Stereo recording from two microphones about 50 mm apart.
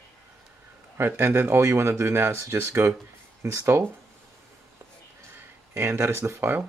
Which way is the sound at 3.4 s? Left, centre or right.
Right.